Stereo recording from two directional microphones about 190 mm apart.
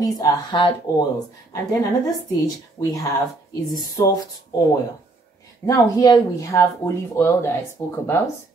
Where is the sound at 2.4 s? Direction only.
20° left (ahead or behind).